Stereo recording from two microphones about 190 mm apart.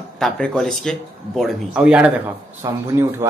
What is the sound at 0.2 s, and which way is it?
Speech, centre (ahead or behind).